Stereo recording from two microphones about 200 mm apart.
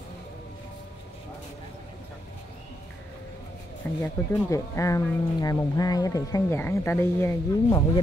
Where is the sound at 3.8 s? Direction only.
10° left (ahead or behind).